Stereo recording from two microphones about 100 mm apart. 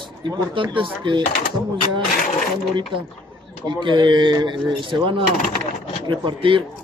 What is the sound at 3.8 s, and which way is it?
A man's voice, 50° right (ahead or behind).